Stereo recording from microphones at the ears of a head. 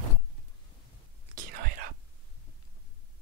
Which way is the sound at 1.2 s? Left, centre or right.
Right.